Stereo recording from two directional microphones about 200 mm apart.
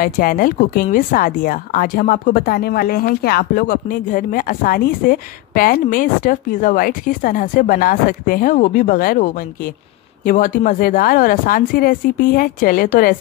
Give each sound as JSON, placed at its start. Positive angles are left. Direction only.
{"t": 0.0, "sound": "speech", "side_deg": 45}